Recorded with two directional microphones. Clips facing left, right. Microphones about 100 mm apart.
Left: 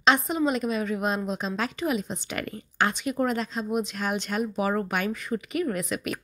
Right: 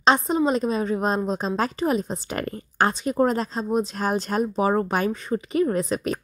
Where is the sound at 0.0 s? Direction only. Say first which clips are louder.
Right 3 dB; 35° right (ahead or behind).